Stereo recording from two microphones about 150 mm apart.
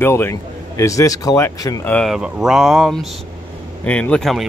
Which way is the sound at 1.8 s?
10° left (ahead or behind).